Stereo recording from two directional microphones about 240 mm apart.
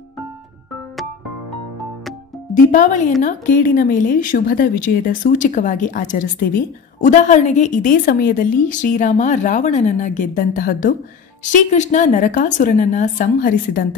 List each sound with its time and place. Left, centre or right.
2.5 s a woman's voice: left